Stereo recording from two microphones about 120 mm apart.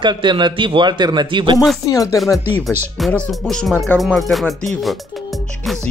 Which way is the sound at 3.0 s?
Centre (ahead or behind).